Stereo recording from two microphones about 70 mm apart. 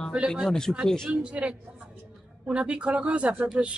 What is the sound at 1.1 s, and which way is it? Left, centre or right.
A woman's voice, centre.